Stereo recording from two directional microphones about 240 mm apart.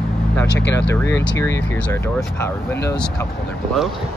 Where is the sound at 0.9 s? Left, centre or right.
Centre.